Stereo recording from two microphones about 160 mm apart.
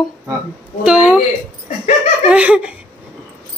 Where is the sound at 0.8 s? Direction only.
5° right (ahead or behind).